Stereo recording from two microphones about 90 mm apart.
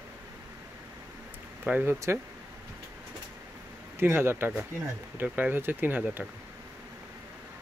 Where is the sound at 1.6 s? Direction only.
20° right (ahead or behind).